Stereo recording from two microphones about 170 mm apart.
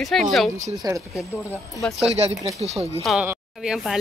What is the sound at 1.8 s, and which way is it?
Speech, centre (ahead or behind).